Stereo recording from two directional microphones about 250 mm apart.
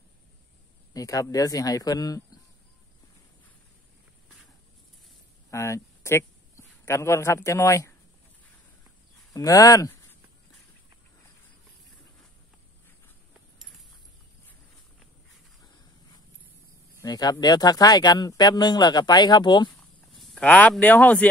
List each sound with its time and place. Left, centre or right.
0.9 s speech: centre
5.5 s speech: centre
9.3 s speech: centre
17.0 s speech: centre
20.1 s speech: centre